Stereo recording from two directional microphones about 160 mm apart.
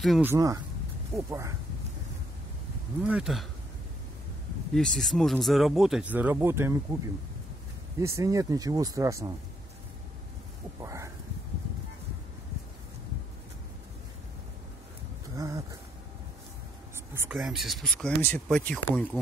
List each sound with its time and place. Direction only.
0.2 s speech: 20° right (ahead or behind)
3.0 s speech: 5° right (ahead or behind)
4.7 s speech: centre (ahead or behind); by 7.0 s 15° right (ahead or behind)
8.0 s speech: 20° right (ahead or behind)
10.8 s speech: 20° right (ahead or behind)
15.3 s a sound: 20° right (ahead or behind)
17.3 s speech: 5° right (ahead or behind)